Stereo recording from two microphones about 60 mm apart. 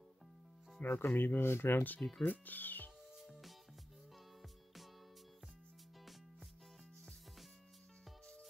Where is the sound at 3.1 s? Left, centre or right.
Centre.